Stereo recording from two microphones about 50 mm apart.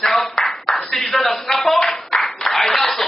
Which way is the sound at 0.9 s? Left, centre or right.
Centre.